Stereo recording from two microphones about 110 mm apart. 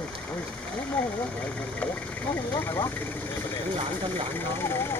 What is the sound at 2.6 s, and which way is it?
Vehicle, 20° left (ahead or behind).